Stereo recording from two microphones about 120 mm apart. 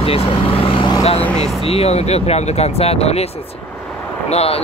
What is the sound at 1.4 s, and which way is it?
Speech, 55° left (ahead or behind).